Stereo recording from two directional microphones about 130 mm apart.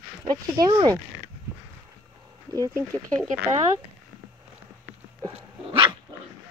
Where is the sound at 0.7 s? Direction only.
30° right (ahead or behind).